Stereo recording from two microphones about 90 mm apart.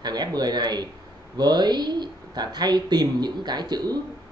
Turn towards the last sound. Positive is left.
turn(degrees=-50)  # may be behind; listen again after turning